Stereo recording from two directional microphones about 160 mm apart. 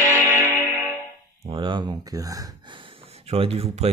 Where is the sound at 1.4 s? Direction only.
30° right (ahead or behind).